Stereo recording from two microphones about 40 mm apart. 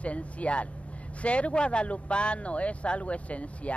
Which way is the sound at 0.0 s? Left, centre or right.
Left.